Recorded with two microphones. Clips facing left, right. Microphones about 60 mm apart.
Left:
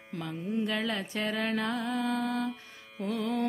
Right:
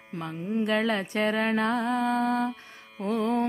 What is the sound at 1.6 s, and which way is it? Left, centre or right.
Music, right.